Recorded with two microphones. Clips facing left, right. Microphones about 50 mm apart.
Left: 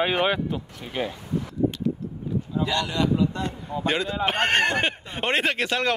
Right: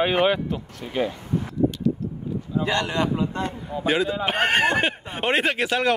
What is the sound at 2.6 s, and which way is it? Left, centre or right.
Speech, right.